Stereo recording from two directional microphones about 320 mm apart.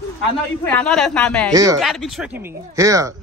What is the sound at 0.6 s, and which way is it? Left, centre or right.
Speech, centre.